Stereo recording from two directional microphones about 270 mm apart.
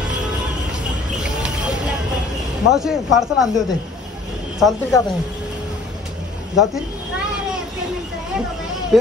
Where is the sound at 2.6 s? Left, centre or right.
Centre.